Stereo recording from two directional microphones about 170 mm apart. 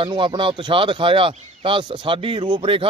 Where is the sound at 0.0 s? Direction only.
25° right (ahead or behind).